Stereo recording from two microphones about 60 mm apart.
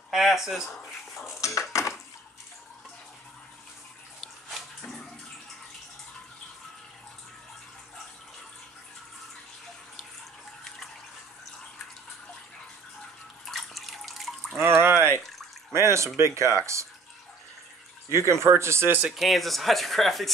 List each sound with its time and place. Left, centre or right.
0.1 s speech: centre
1.7 s a sound: left
4.2 s dog: centre
13.5 s water: centre
14.6 s a sound: right
16.3 s speech: right
18.1 s speech: right
19.1 s speech: centre